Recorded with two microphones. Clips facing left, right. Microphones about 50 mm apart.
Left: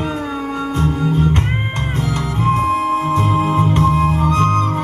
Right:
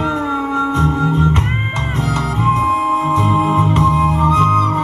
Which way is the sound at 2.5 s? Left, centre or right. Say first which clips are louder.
Right 1 dB; centre.